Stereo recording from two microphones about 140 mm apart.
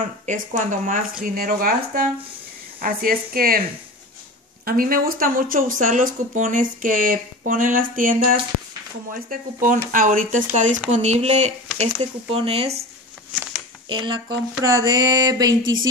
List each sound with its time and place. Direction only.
0.0 s speech: 65° right (ahead or behind)
1.2 s speech: 85° right
4.6 s speech: 90° right; by 10.4 s 70° right (ahead or behind)
10.5 s speech: 60° right (ahead or behind)
13.8 s speech: 35° right (ahead or behind)
14.6 s a sound: 25° right (ahead or behind)